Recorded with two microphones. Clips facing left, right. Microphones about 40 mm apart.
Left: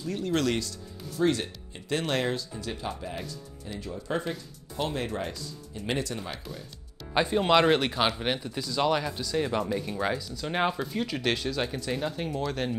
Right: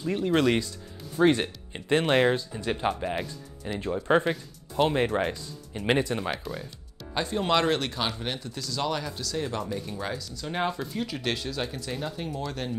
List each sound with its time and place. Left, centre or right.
0.0 s speech: right
1.2 s speech: right
4.3 s speech: right
7.2 s speech: centre
10.8 s speech: centre